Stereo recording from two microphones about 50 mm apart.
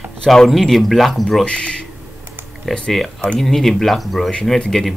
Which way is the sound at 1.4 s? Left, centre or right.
Centre.